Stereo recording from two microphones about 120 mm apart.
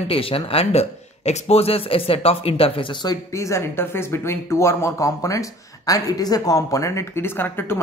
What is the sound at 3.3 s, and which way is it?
Speech, 25° left (ahead or behind).